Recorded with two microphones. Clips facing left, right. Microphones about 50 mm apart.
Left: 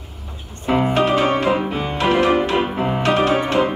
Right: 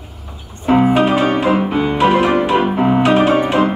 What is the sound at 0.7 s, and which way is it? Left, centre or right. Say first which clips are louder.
Music: right 4 dB; centre.